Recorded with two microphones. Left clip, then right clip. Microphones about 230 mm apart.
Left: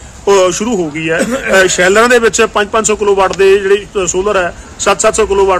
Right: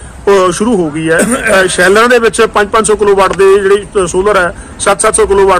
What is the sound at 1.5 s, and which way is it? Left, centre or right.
Speech, centre.